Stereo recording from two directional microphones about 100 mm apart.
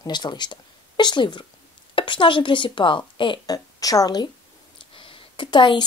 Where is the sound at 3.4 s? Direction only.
40° left (ahead or behind).